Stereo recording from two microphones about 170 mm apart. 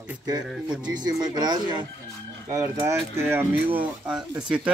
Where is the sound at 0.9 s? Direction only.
25° right (ahead or behind).